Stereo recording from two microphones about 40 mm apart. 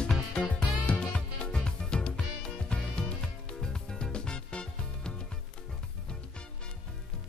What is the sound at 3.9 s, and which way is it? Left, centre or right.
Music, left.